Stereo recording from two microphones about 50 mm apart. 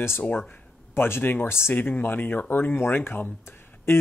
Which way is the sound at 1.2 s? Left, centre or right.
Left.